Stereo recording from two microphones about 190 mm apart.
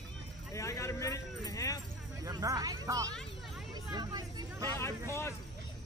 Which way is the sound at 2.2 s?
15° right (ahead or behind).